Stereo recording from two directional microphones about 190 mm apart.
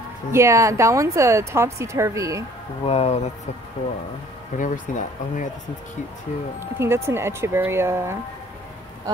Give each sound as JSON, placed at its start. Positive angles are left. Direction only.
{"t": 0.3, "sound": "a woman's voice", "side_deg": -15}
{"t": 2.8, "sound": "speech", "side_deg": 30}
{"t": 4.6, "sound": "speech", "side_deg": 40}
{"t": 6.8, "sound": "a woman's voice", "side_deg": -15}